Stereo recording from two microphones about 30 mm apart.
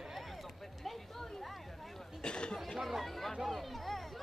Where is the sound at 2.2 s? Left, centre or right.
Left.